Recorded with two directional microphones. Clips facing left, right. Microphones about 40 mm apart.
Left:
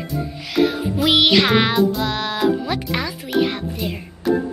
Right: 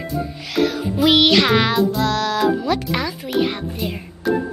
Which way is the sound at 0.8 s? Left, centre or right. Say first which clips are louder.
Right 2 dB; centre.